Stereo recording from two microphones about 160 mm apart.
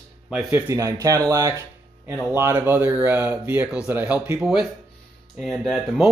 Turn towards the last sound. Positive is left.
turn(degrees=0)  # may be behind; listen again after turning